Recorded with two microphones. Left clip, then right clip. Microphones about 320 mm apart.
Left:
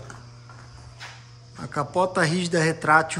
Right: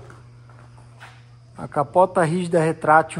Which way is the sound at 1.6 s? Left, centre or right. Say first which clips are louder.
Right 6 dB; centre.